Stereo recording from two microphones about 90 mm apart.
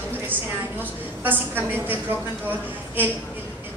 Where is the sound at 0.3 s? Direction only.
20° right (ahead or behind).